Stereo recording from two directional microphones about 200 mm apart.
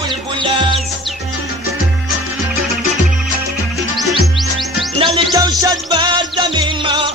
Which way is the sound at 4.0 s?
Centre (ahead or behind).